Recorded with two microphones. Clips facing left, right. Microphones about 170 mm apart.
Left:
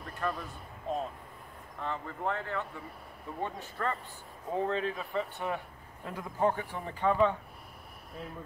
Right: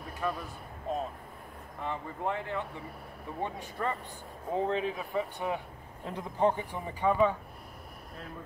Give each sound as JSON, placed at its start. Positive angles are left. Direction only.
{"t": 0.2, "sound": "speech", "side_deg": -5}
{"t": 1.8, "sound": "speech", "side_deg": -15}